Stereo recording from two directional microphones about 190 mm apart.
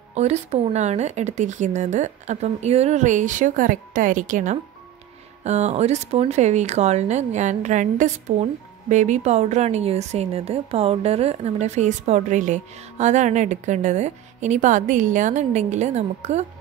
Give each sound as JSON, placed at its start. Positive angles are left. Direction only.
{"t": 0.1, "sound": "speech", "side_deg": -35}